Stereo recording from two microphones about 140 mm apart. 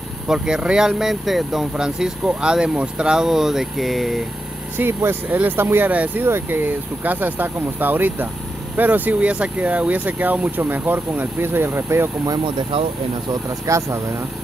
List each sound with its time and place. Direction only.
0.3 s speech: 5° right (ahead or behind)
4.7 s speech: 15° right (ahead or behind)
12.3 s speech: 35° right (ahead or behind)
13.3 s speech: 20° right (ahead or behind)